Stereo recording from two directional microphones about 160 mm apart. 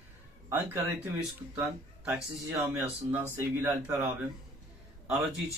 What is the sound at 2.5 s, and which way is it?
Speech, 20° right (ahead or behind).